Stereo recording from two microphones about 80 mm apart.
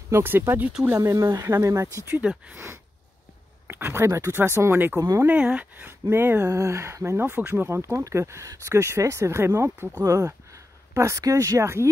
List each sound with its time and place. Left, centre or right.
0.1 s speech: right
0.9 s speech: right
2.1 s speech: centre
2.5 s speech: right
5.2 s speech: centre
6.5 s speech: right